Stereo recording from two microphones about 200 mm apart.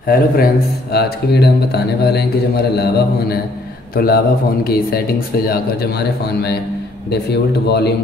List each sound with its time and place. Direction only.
0.0 s a man's voice: 50° left (ahead or behind)